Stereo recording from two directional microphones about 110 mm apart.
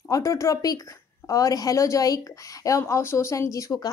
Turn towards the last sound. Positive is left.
turn(degrees=30)  # may be behind; listen again after turning